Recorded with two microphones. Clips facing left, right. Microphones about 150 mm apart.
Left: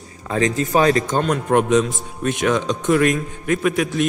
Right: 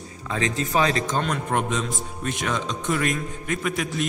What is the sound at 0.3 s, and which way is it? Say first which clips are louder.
Speech: left 6 dB; 45° left (ahead or behind).